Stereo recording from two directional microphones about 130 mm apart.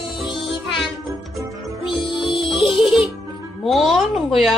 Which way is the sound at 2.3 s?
40° left (ahead or behind).